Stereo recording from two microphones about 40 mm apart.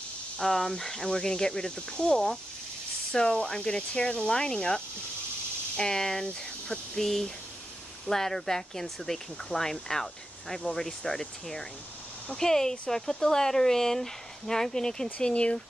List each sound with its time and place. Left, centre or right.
0.4 s speech: centre
15.1 s speech: left